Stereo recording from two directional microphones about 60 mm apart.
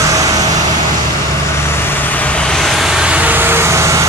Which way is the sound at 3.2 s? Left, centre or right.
Right.